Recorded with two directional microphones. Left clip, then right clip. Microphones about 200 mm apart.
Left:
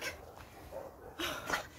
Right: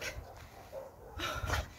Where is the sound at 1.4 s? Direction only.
10° left (ahead or behind).